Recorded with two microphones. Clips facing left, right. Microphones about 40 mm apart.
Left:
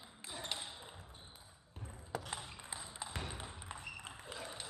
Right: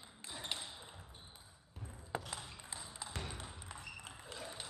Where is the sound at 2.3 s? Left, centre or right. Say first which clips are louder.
Left 2 dB; left.